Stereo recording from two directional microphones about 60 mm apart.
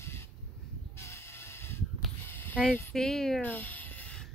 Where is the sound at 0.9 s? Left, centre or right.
Left.